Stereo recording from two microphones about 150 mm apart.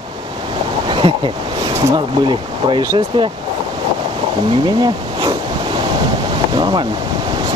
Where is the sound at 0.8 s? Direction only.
35° right (ahead or behind).